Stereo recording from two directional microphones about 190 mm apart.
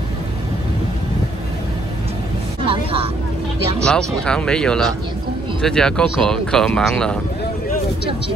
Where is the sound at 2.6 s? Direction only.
30° right (ahead or behind).